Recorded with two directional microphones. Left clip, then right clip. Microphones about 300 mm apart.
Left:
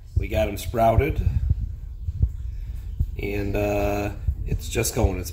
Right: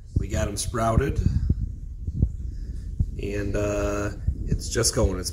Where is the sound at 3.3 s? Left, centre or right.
Centre.